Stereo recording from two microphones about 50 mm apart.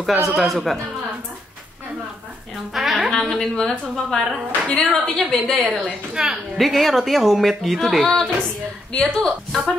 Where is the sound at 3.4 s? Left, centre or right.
Centre.